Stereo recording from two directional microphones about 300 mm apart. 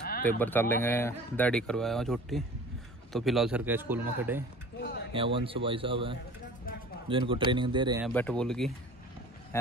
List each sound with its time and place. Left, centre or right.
0.4 s speech: centre
4.7 s a sound: left
5.1 s speech: centre
8.0 s speech: centre